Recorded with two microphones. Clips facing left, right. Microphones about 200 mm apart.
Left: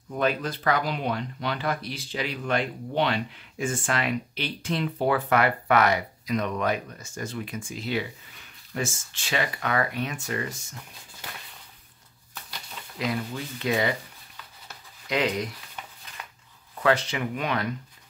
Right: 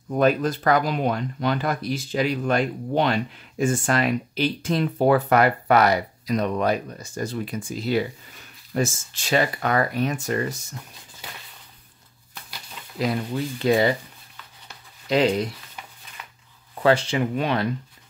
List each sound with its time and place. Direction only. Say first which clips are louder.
0.1 s speech: right 6 dB; 45° right (ahead or behind)
13.0 s speech: right 5 dB; 35° right (ahead or behind)
15.0 s speech: right 6 dB; 30° right (ahead or behind)
16.8 s speech: right 4 dB; 30° right (ahead or behind)